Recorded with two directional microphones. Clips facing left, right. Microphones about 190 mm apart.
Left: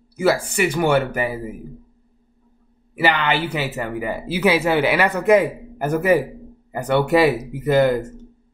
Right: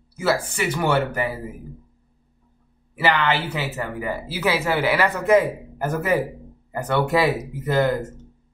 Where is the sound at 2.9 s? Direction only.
15° left (ahead or behind).